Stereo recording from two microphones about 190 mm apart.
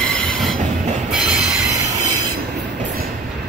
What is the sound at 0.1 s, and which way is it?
Train, centre (ahead or behind).